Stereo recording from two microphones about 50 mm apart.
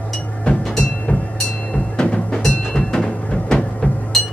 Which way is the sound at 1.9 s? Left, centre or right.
Centre.